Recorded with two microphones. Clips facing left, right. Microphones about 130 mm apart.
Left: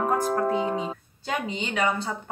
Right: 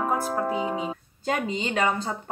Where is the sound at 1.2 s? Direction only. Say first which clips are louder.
Right 3 dB; 35° right (ahead or behind).